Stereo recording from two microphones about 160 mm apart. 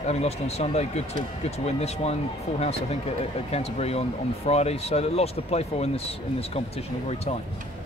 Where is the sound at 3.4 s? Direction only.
40° left (ahead or behind).